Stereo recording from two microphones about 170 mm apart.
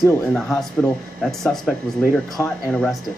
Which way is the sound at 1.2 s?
Centre (ahead or behind).